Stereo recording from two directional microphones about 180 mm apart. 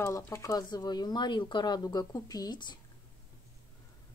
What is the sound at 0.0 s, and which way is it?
A woman's voice, 15° left (ahead or behind).